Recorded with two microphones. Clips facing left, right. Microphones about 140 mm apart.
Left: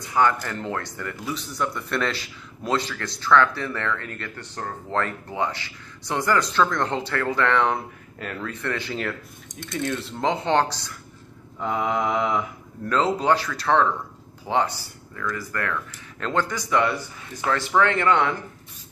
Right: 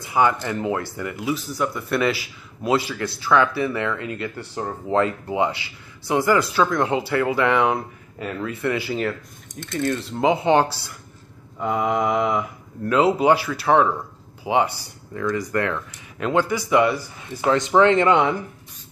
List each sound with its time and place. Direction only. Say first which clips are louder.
0.0 s speech: right 2 dB; 10° right (ahead or behind)
17.5 s speech: right 5 dB; 20° right (ahead or behind)